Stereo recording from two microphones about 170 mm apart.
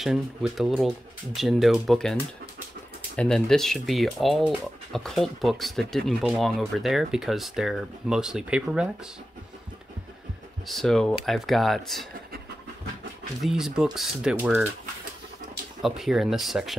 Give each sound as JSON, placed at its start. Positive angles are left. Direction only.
{"t": 0.0, "sound": "speech", "side_deg": 0}
{"t": 3.2, "sound": "speech", "side_deg": 5}
{"t": 10.7, "sound": "speech", "side_deg": 0}
{"t": 13.4, "sound": "speech", "side_deg": -5}
{"t": 15.8, "sound": "speech", "side_deg": 0}